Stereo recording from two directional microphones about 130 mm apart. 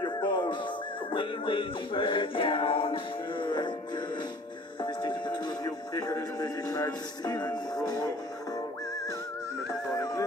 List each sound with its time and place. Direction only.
0.0 s music: 35° left (ahead or behind)
5.9 s speech: 25° left (ahead or behind)